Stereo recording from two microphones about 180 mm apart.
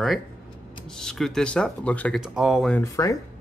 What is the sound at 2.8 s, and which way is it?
Speech, 15° left (ahead or behind).